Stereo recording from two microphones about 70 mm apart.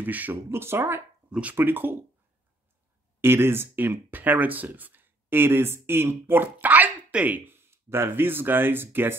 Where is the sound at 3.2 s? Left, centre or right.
Right.